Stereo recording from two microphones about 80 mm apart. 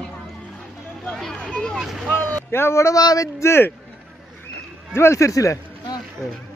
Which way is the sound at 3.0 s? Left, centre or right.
Left.